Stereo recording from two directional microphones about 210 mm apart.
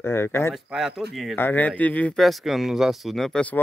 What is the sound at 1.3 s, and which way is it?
Speech, 10° left (ahead or behind).